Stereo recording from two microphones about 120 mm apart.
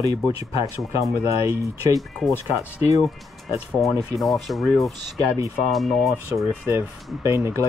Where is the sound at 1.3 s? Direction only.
25° right (ahead or behind).